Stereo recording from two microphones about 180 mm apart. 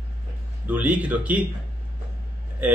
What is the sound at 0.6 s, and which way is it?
Speech, 10° right (ahead or behind).